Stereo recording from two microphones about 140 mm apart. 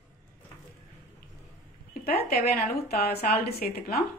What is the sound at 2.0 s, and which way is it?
A woman's voice, 90° left.